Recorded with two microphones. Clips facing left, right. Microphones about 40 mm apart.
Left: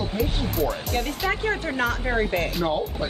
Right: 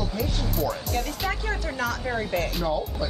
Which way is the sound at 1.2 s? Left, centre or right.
Left.